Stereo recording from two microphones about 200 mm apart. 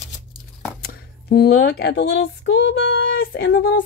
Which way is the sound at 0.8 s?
50° left (ahead or behind).